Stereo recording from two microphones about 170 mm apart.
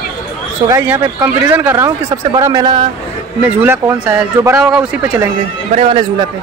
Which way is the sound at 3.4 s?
10° right (ahead or behind).